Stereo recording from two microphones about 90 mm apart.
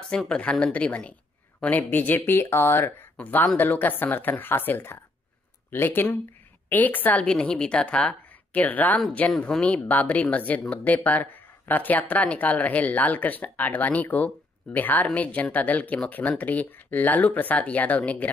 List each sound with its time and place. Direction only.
0.1 s speech: 10° left (ahead or behind)